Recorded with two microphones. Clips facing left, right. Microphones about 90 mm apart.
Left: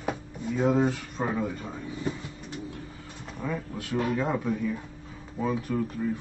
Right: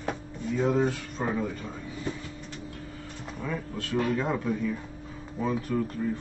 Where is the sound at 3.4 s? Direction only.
15° left (ahead or behind).